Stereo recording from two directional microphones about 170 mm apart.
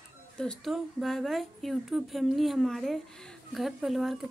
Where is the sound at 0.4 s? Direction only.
Centre (ahead or behind).